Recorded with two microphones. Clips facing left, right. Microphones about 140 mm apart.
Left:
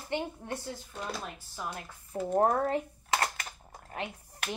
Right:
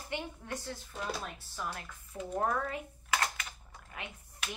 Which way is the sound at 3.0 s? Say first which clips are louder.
Left 3 dB; 35° left (ahead or behind).